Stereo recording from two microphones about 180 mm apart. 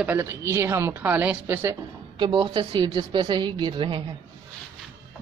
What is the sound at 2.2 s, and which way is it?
A woman's voice, 25° right (ahead or behind).